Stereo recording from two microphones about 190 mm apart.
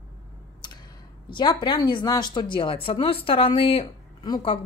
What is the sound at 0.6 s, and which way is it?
A woman's voice, 25° left (ahead or behind).